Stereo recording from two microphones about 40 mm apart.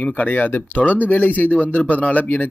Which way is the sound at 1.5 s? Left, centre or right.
Left.